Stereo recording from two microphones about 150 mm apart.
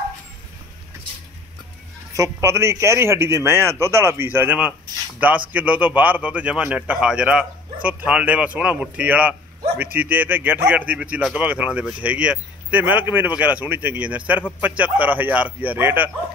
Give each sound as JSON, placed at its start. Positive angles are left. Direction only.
{"t": 2.1, "sound": "a man's voice", "side_deg": -20}